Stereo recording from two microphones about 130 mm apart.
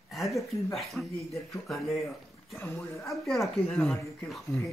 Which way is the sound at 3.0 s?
Centre (ahead or behind).